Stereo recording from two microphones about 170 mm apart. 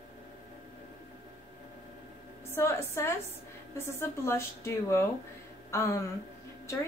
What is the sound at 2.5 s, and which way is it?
Speech, 15° left (ahead or behind).